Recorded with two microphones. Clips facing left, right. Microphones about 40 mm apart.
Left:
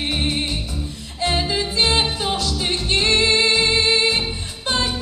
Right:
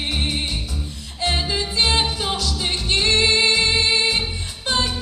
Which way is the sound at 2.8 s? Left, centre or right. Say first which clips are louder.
Even; left.